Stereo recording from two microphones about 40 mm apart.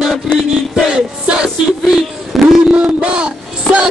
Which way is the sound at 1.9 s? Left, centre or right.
Centre.